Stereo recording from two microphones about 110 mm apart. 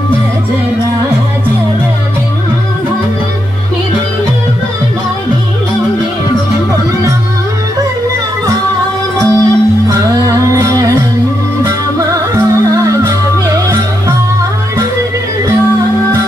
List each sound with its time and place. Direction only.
9.2 s music: 35° right (ahead or behind)